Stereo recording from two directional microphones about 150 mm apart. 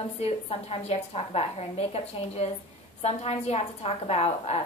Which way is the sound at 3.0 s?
45° left (ahead or behind).